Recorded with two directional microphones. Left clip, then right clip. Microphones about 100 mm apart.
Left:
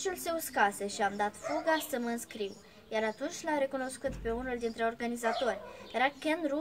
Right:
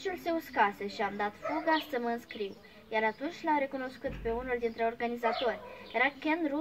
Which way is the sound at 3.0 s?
30° left (ahead or behind).